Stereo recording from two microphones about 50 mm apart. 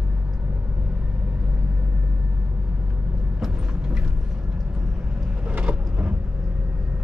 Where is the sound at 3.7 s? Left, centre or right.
Centre.